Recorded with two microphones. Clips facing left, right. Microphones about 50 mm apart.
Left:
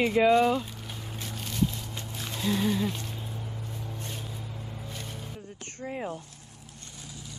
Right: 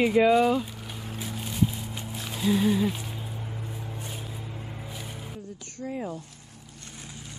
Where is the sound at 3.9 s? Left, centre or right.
Centre.